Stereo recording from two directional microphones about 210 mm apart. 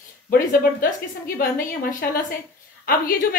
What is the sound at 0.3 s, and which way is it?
A woman's voice, 45° left (ahead or behind).